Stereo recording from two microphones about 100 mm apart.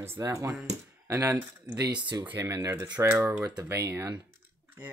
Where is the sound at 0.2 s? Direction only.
30° right (ahead or behind).